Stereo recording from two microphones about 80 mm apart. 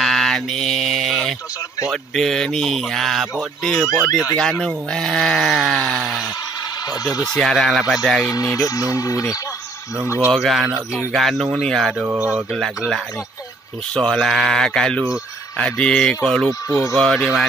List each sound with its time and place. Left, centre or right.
0.0 s mantra: centre
1.9 s speech: centre
6.9 s speech: left
7.3 s speech: centre
8.5 s speech: left
10.3 s speech: centre
12.0 s speech: centre
12.5 s speech: centre
16.6 s speech: left
16.9 s speech: centre